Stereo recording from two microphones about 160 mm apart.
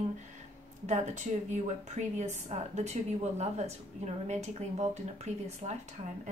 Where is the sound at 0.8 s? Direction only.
45° right (ahead or behind).